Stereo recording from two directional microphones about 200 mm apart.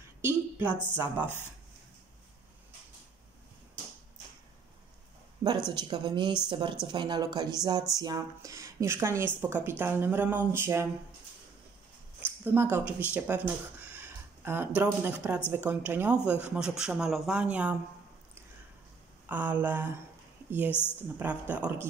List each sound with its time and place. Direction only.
0.2 s a woman's voice: 10° right (ahead or behind)
5.4 s a sound: 15° right (ahead or behind)
5.8 s speech: 20° right (ahead or behind)
12.3 s speech: 10° right (ahead or behind)
19.2 s a woman's voice: 10° right (ahead or behind)
20.7 s a woman's voice: 10° left (ahead or behind)
21.2 s speech: 10° right (ahead or behind)